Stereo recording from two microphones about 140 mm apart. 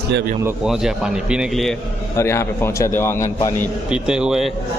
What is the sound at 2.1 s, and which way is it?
A man's voice, 20° left (ahead or behind).